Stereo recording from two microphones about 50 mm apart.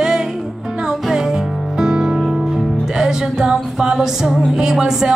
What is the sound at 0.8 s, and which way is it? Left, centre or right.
Music, centre.